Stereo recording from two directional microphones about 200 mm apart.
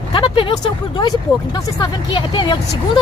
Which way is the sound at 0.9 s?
20° left (ahead or behind).